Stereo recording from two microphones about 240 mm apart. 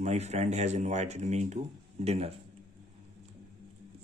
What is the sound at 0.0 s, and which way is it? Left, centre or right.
Speech, right.